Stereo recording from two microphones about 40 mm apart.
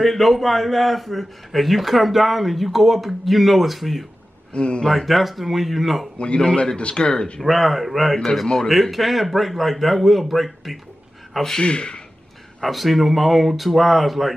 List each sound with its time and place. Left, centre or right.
0.0 s a man's voice: centre
4.6 s speech: left
4.8 s a man's voice: centre
6.1 s speech: left
7.4 s a man's voice: centre
11.3 s a man's voice: centre
11.6 s speech: left
12.6 s a man's voice: centre